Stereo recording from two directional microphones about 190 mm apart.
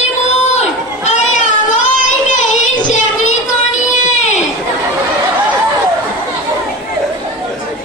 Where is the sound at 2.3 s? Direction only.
40° left (ahead or behind).